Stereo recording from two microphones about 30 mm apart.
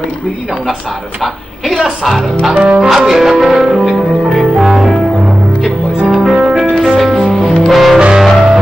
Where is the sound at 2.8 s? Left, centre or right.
Centre.